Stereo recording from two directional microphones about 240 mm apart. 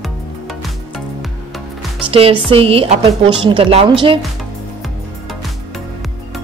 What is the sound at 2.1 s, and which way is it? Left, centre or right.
Speech, right.